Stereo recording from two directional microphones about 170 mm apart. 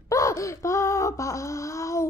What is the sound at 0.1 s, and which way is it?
Wail, 20° left (ahead or behind).